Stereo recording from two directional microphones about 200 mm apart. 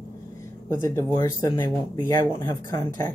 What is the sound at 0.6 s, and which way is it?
Speech, 15° left (ahead or behind).